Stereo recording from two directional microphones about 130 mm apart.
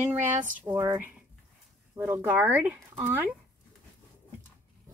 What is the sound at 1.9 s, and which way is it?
Speech, 15° right (ahead or behind).